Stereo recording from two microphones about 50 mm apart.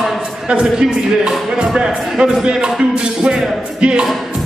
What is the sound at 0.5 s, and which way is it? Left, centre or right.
Speech, centre.